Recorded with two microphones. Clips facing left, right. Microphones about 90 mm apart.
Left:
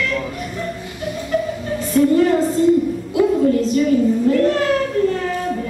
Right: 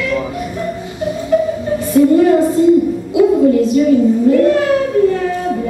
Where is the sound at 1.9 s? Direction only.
10° right (ahead or behind).